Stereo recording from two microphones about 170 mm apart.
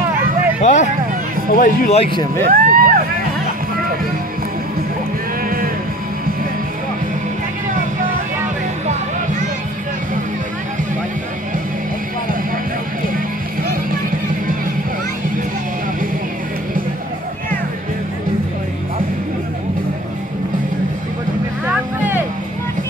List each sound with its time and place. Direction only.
0.6 s speech: 45° left (ahead or behind)
2.0 s speech: 30° left (ahead or behind)
2.5 s vehicle: 55° right (ahead or behind)